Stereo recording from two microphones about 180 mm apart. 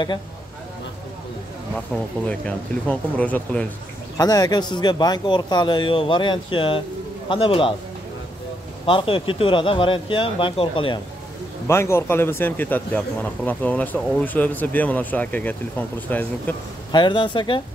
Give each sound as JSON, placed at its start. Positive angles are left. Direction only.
{"t": 2.2, "sound": "a man's voice", "side_deg": 5}
{"t": 4.2, "sound": "speech", "side_deg": 20}
{"t": 8.8, "sound": "speech", "side_deg": 30}
{"t": 11.6, "sound": "a man's voice", "side_deg": 15}
{"t": 16.9, "sound": "speech", "side_deg": 25}